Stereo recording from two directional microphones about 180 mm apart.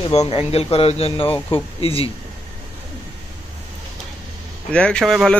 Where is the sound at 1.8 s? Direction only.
30° left (ahead or behind).